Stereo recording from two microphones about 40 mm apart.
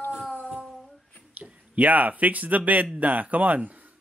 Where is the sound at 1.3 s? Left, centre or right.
Right.